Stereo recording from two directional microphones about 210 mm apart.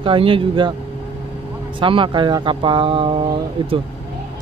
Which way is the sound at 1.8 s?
25° right (ahead or behind).